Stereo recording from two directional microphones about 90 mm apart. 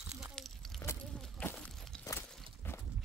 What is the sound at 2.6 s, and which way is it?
Clip-clop, 25° left (ahead or behind).